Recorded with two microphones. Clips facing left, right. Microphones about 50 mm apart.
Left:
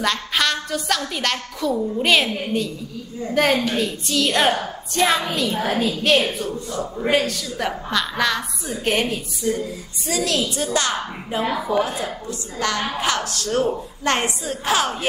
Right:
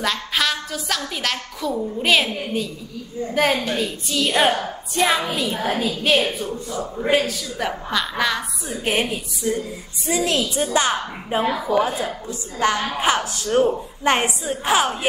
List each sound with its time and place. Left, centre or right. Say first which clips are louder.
0.0 s a woman's voice: left 1 dB; centre
3.7 s a woman's voice: left 1 dB; centre
10.0 s a woman's voice: right 1 dB; right
11.4 s a woman's voice: even; centre
11.8 s a woman's voice: right 1 dB; centre